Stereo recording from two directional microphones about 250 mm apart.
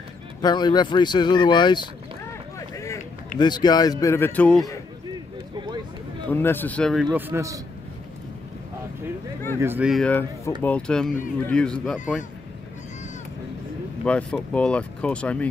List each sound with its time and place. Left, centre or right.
0.4 s speech: centre
2.7 s a sound: centre
3.3 s speech: centre
6.3 s speech: centre
7.1 s a man's voice: centre
9.6 s speech: centre
14.0 s speech: centre